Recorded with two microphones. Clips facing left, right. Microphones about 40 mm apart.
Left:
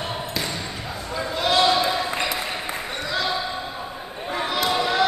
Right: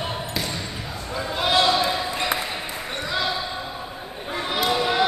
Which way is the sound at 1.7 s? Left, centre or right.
Centre.